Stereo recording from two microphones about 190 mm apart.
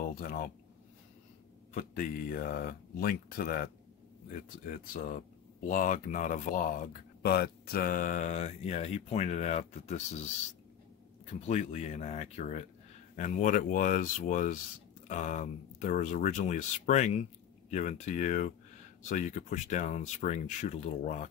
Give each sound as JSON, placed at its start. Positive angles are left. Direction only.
{"t": 0.0, "sound": "speech", "side_deg": 50}
{"t": 1.7, "sound": "speech", "side_deg": 45}
{"t": 11.4, "sound": "speech", "side_deg": 35}